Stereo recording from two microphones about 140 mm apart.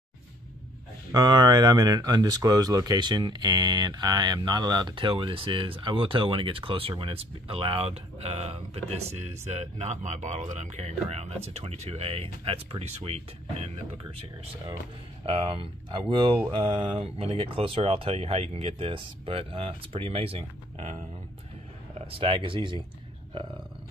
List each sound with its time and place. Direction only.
1.1 s speech: 30° right (ahead or behind); by 13.2 s 45° right (ahead or behind)
15.2 s speech: 40° right (ahead or behind)
21.9 s speech: 40° right (ahead or behind)